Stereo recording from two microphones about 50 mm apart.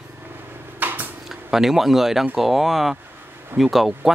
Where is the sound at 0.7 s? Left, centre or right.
Right.